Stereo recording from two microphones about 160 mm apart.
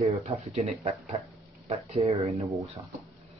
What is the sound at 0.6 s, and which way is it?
Speech, 45° right (ahead or behind).